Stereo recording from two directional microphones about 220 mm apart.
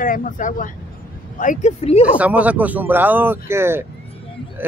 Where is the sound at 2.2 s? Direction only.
5° right (ahead or behind).